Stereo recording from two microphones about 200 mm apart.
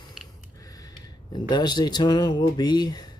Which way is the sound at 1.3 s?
20° left (ahead or behind).